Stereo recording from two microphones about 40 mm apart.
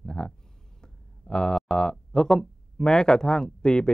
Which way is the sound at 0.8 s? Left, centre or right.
Centre.